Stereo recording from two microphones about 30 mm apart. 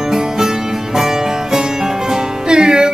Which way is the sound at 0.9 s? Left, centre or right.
Centre.